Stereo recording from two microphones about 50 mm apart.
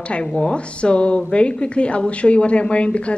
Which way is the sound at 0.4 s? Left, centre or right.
Centre.